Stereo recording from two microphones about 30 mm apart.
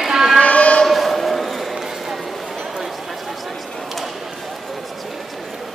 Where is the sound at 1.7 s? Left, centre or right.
Centre.